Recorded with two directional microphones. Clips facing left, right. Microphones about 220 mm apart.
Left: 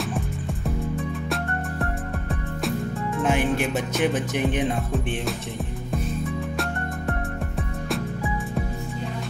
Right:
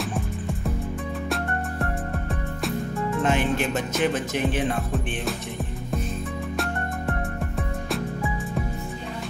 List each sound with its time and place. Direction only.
3.3 s music: 10° left (ahead or behind)